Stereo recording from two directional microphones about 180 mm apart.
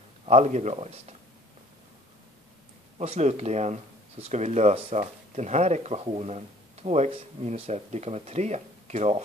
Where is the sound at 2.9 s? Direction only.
35° right (ahead or behind).